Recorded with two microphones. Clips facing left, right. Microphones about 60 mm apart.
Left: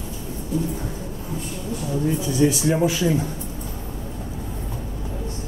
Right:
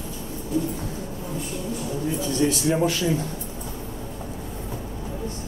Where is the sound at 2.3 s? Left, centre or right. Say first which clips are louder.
Left 2 dB; centre.